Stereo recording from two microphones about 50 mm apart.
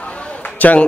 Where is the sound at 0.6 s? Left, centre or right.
Left.